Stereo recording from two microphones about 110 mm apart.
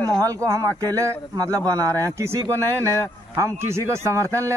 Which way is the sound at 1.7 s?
30° right (ahead or behind).